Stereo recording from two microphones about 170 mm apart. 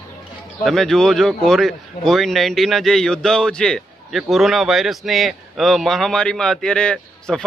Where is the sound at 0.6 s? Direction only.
Centre (ahead or behind).